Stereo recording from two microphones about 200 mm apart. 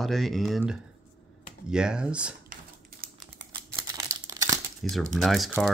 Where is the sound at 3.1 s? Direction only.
20° right (ahead or behind).